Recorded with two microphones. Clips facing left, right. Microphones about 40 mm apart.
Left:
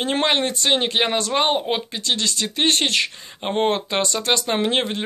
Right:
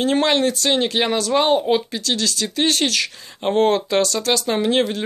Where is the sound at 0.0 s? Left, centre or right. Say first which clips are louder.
Right 3 dB; left.